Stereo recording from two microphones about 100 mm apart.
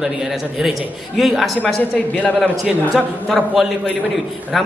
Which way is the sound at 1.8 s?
15° left (ahead or behind).